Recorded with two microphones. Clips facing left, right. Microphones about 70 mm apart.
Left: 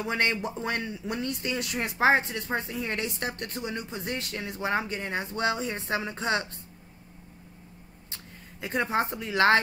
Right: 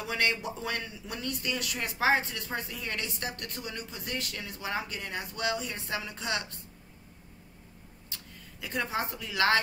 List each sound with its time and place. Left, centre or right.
0.0 s speech: left
8.1 s speech: left